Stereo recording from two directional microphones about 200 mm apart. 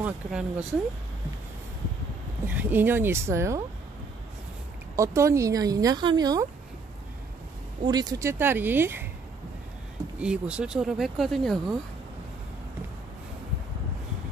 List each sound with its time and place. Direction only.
0.0 s speech: 5° right (ahead or behind)
2.4 s speech: 10° right (ahead or behind)
4.9 s speech: 15° right (ahead or behind)
7.8 s speech: 20° right (ahead or behind)
10.1 s speech: 5° right (ahead or behind)